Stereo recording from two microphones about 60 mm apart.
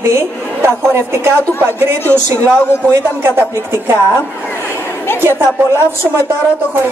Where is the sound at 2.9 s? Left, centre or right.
Right.